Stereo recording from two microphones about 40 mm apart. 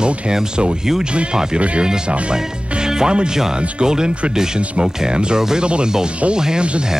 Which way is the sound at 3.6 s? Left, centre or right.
Right.